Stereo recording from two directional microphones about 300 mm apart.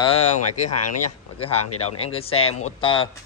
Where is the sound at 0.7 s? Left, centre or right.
Left.